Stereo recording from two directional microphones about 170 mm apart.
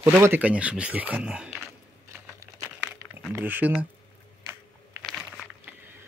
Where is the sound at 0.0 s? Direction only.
15° right (ahead or behind).